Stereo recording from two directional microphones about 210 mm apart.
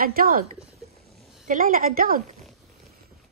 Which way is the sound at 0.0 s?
45° right (ahead or behind).